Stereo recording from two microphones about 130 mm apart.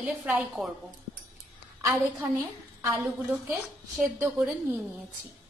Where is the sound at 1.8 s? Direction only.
25° right (ahead or behind).